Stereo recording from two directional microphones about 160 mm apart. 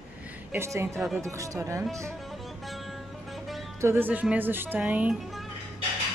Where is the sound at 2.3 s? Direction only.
Centre (ahead or behind).